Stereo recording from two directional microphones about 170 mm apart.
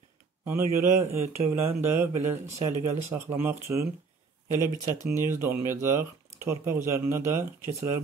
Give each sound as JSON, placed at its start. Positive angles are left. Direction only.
{"t": 0.5, "sound": "speech", "side_deg": -15}
{"t": 4.8, "sound": "speech", "side_deg": -15}